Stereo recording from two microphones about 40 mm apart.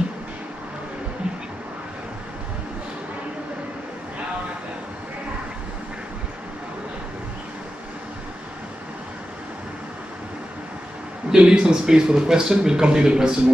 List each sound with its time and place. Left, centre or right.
11.3 s speech: centre